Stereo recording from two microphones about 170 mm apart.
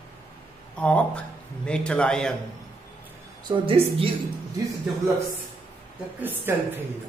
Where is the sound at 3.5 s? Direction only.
30° right (ahead or behind).